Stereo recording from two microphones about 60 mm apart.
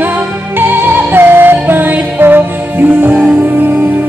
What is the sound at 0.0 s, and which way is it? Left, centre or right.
Music, right.